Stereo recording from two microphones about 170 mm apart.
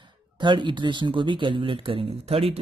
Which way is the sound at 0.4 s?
25° right (ahead or behind).